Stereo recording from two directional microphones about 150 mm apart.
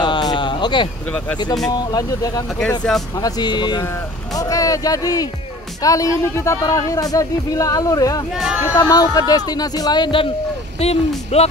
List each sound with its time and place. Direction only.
0.0 s a sound: 30° left (ahead or behind)
1.7 s speech: 25° left (ahead or behind)
10.8 s speech: 45° left (ahead or behind)